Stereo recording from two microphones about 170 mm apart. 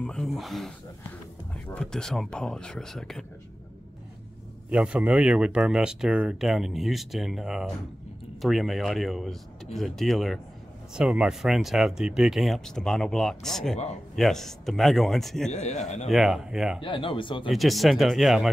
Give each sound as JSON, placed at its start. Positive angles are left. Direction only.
{"t": 0.0, "sound": "speech", "side_deg": 5}
{"t": 1.8, "sound": "speech", "side_deg": 5}
{"t": 4.6, "sound": "speech", "side_deg": -5}
{"t": 15.5, "sound": "a man's voice", "side_deg": 40}
{"t": 16.1, "sound": "speech", "side_deg": 0}
{"t": 16.8, "sound": "speech", "side_deg": 30}
{"t": 17.5, "sound": "speech", "side_deg": 0}